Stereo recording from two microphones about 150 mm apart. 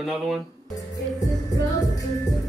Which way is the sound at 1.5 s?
25° left (ahead or behind).